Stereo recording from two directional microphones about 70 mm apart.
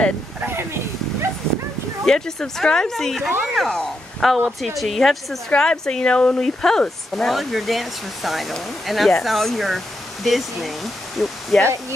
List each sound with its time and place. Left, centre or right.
0.4 s speech: right
2.0 s speech: centre